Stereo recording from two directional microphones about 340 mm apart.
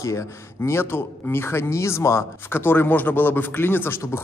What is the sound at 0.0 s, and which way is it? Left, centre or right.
Speech, centre.